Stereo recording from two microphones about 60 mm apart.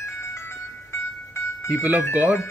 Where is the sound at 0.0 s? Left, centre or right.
Left.